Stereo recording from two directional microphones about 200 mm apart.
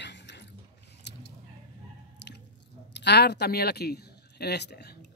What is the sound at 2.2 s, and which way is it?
Drip, 60° left (ahead or behind).